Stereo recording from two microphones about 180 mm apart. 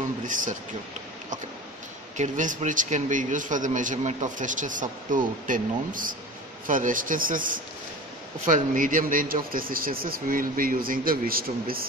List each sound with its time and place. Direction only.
0.2 s a man's voice: 45° right (ahead or behind)
2.1 s a man's voice: 45° right (ahead or behind)